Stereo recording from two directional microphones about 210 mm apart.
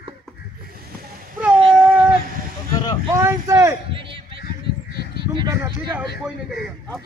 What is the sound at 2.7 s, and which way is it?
Vehicle, 15° left (ahead or behind).